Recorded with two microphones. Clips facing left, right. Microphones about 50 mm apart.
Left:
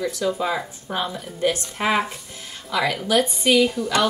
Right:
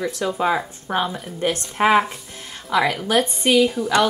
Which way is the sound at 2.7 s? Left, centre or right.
Right.